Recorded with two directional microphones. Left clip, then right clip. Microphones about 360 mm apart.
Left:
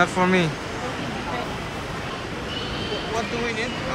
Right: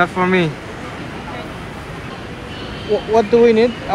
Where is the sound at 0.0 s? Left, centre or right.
Centre.